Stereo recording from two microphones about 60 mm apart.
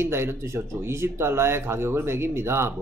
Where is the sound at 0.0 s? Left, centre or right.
Right.